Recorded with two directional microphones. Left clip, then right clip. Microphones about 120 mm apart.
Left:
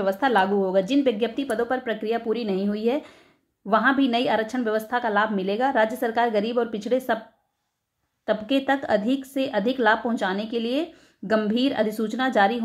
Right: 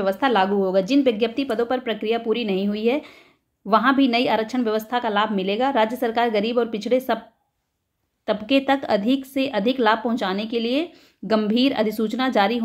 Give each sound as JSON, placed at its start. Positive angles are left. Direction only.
{"t": 0.0, "sound": "a woman's voice", "side_deg": -15}
{"t": 8.3, "sound": "a woman's voice", "side_deg": -20}